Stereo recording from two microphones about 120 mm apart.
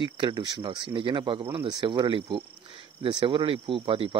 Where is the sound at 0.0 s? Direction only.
40° right (ahead or behind).